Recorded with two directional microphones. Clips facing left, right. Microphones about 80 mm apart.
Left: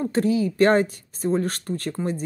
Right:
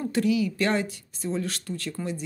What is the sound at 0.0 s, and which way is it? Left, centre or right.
Speech, left.